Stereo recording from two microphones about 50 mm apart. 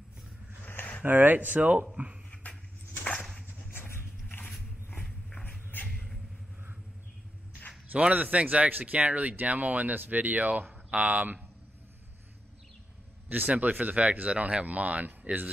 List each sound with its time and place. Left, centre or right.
0.7 s a sound: left
1.0 s speech: right
3.7 s a sound: left
5.7 s vehicle: left
7.9 s speech: right
13.3 s speech: right